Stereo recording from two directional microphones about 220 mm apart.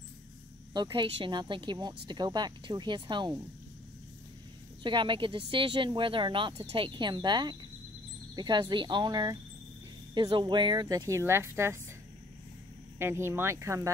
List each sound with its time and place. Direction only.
0.7 s speech: 20° right (ahead or behind)
4.8 s speech: 20° right (ahead or behind)
13.0 s speech: 10° right (ahead or behind)